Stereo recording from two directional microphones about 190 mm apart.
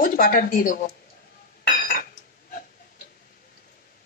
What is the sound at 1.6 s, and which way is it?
Dishes, 55° left (ahead or behind).